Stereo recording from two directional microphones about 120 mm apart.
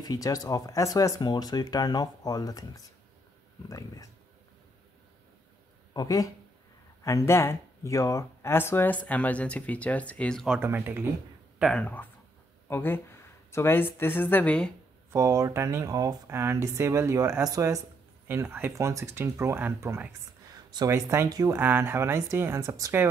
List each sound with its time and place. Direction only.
0.0 s speech: 30° left (ahead or behind)
5.9 s speech: 30° left (ahead or behind); by 10.4 s 10° left (ahead or behind)
10.6 s speech: 20° right (ahead or behind)
11.5 s a sound: 5° right (ahead or behind)
11.8 s speech: 15° left (ahead or behind)
15.0 s speech: 25° right (ahead or behind)
21.5 s speech: 15° right (ahead or behind)